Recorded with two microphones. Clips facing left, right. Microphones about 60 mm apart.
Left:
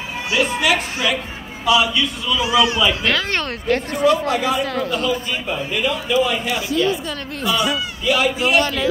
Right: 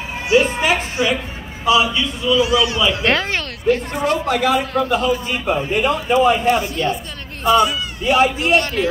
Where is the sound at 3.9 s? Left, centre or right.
Right.